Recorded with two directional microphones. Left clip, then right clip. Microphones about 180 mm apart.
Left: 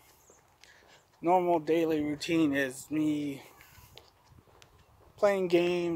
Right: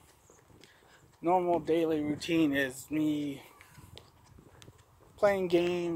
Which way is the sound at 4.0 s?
65° right (ahead or behind).